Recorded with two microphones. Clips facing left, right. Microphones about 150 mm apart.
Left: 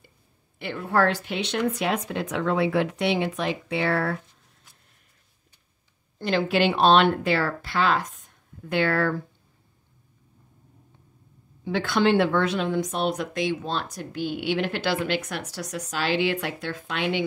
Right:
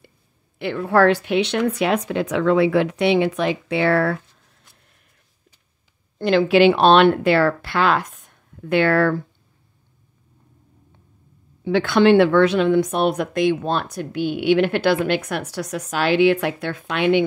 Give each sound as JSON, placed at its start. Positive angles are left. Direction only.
{"t": 0.6, "sound": "speech", "side_deg": -90}
{"t": 6.1, "sound": "speech", "side_deg": -80}
{"t": 11.6, "sound": "speech", "side_deg": -70}